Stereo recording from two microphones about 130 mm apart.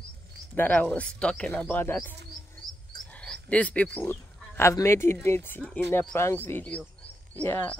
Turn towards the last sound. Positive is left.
turn(degrees=15)  # may be behind; listen again after turning